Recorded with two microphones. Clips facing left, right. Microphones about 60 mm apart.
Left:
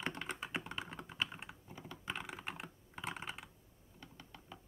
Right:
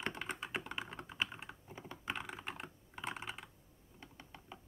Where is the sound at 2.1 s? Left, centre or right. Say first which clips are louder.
Even; centre.